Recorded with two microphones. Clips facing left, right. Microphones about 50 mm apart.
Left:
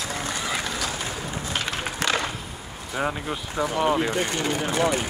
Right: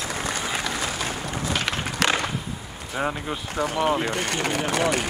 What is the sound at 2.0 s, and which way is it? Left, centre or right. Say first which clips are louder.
Skateboard: right 3 dB; right.